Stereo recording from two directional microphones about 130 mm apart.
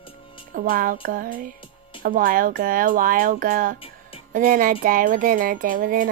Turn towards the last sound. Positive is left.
turn(degrees=-90)